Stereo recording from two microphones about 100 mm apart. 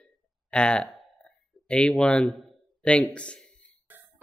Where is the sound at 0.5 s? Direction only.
10° left (ahead or behind).